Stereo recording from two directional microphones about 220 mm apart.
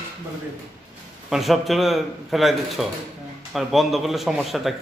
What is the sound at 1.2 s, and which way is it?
Speech, centre (ahead or behind).